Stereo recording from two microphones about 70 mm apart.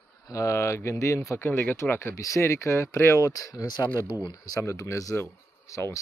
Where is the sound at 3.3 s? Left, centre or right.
Left.